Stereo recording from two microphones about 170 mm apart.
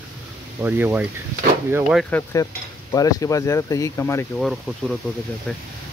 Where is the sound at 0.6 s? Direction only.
10° right (ahead or behind).